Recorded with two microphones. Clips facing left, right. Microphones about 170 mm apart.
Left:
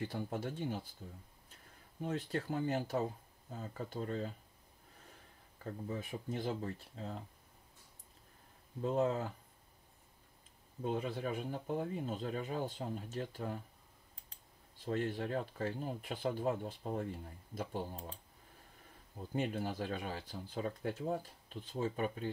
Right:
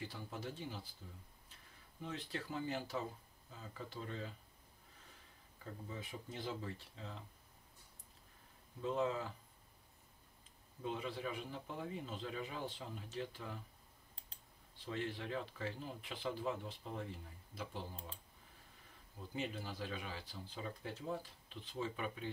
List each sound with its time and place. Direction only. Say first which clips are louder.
0.0 s speech: left 7 dB; 55° left (ahead or behind)
2.0 s speech: left 7 dB; 45° left (ahead or behind)
5.6 s speech: left 7 dB; 50° left (ahead or behind)
8.8 s speech: left 4 dB; 45° left (ahead or behind)
10.8 s speech: left 5 dB; 45° left (ahead or behind)
14.9 s speech: left 6 dB; 45° left (ahead or behind)
19.1 s speech: left 6 dB; 50° left (ahead or behind)